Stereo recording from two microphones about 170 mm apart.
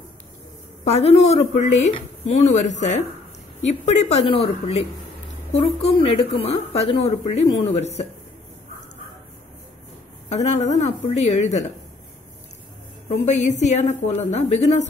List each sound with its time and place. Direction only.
0.8 s speech: 40° left (ahead or behind)
10.3 s speech: 40° left (ahead or behind)
13.2 s a woman's voice: 45° left (ahead or behind)